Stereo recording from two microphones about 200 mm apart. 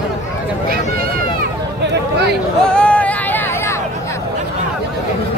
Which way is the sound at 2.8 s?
5° left (ahead or behind).